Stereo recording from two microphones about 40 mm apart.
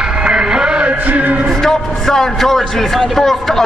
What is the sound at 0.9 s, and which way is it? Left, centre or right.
Music, right.